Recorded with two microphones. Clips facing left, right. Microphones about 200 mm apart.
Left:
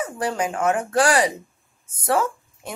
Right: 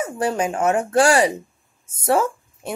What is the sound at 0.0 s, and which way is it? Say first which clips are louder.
A woman's voice: right 3 dB; 25° right (ahead or behind).